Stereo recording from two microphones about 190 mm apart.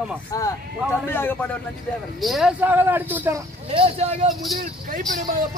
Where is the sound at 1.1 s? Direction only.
10° left (ahead or behind).